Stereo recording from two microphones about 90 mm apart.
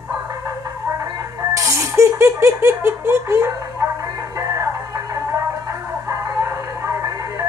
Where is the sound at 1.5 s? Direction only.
35° right (ahead or behind).